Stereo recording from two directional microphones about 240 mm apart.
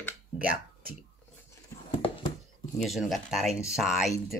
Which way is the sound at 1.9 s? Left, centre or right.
Left.